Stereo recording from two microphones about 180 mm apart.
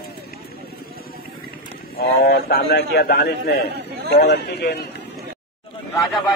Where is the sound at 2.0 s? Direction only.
60° left (ahead or behind).